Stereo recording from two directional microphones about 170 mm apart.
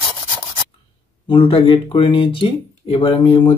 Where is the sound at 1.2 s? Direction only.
30° left (ahead or behind).